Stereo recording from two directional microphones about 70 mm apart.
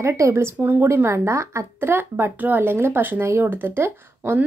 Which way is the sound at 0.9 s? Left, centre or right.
Right.